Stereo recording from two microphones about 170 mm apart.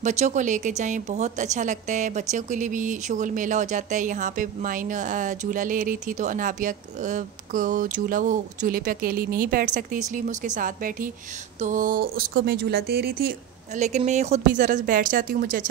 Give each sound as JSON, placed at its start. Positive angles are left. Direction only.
{"t": 0.0, "sound": "a woman's voice", "side_deg": -45}
{"t": 13.7, "sound": "a woman's voice", "side_deg": -45}